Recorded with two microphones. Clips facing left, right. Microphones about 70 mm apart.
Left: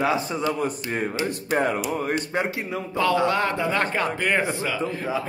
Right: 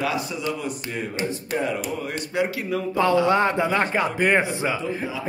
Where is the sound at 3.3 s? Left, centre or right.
Right.